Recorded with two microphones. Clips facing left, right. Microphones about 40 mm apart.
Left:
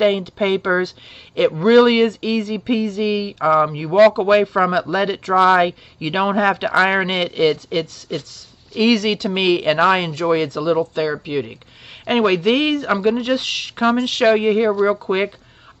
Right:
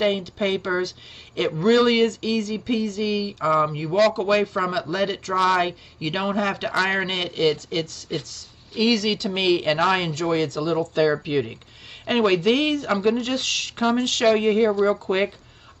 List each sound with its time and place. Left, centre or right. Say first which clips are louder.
0.0 s speech: left 5 dB; centre
5.3 s speech: left 7 dB; left
5.6 s speech: left 6 dB; centre
11.0 s speech: right 1 dB; centre
12.0 s speech: left 3 dB; centre